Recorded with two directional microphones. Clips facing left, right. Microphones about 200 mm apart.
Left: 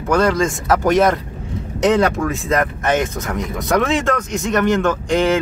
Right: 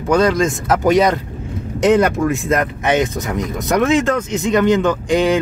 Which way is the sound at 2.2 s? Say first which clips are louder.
Right 3 dB; 15° right (ahead or behind).